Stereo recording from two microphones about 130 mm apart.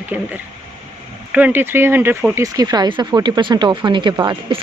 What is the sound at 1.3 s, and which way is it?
Speech, 15° right (ahead or behind).